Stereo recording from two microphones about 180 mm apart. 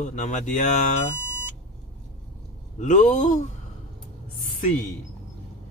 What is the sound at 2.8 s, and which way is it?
Speech, 45° left (ahead or behind).